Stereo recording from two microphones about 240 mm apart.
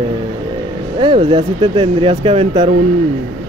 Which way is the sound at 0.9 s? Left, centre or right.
Right.